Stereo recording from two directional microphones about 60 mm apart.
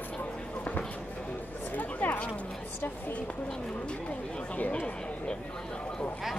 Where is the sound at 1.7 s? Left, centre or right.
Left.